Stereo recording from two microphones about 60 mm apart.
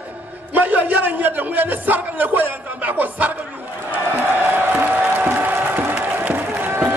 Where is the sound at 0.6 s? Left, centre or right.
Right.